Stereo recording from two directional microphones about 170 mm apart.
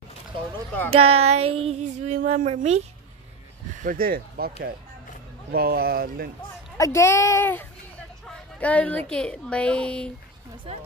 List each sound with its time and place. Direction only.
0.8 s speech: 35° right (ahead or behind)
3.8 s speech: 60° right (ahead or behind)
6.8 s speech: 15° left (ahead or behind)